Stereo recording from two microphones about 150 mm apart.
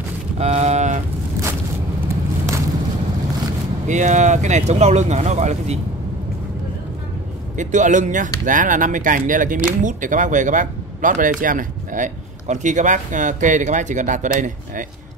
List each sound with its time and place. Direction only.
0.4 s a sound: 45° right (ahead or behind)
3.8 s speech: 55° right (ahead or behind)
7.5 s speech: 55° right (ahead or behind)